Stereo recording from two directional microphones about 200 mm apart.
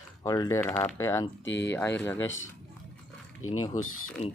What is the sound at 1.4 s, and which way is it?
Speech, 60° left (ahead or behind).